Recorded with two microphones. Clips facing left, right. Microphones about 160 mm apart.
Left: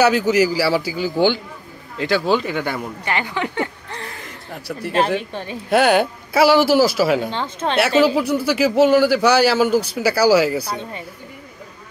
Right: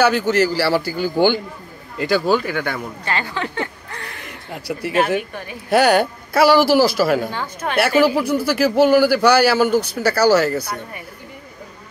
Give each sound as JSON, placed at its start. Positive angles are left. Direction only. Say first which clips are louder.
{"t": 0.0, "sound": "a man's voice", "louder": "left 1 dB", "side_deg": 5}
{"t": 3.1, "sound": "a woman's voice", "louder": "left 1 dB", "side_deg": 15}
{"t": 4.6, "sound": "speech", "louder": "right 1 dB", "side_deg": -5}
{"t": 5.3, "sound": "a woman's voice", "louder": "left 3 dB", "side_deg": 25}
{"t": 5.7, "sound": "a man's voice", "louder": "right 1 dB", "side_deg": 0}
{"t": 7.2, "sound": "a woman's voice", "louder": "left 2 dB", "side_deg": 25}
{"t": 8.0, "sound": "a man's voice", "louder": "even", "side_deg": -5}
{"t": 10.6, "sound": "a woman's voice", "louder": "left 2 dB", "side_deg": 25}